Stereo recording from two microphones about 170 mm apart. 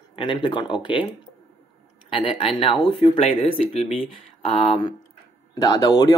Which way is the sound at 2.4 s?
35° left (ahead or behind).